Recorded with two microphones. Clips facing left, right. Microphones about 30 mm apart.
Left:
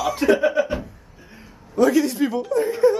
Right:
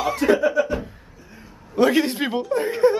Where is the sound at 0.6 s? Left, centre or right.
Left.